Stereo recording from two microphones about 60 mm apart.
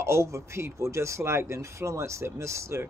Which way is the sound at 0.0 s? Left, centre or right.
Right.